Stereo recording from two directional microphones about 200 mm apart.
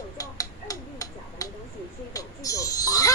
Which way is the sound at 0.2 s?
15° left (ahead or behind).